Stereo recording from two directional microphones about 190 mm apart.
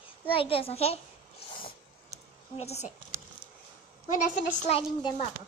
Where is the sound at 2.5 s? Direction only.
35° left (ahead or behind).